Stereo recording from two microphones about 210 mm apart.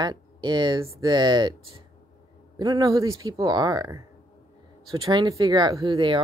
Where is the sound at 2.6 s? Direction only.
20° right (ahead or behind).